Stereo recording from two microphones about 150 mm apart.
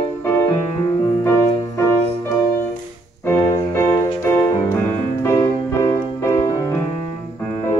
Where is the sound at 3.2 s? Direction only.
15° left (ahead or behind).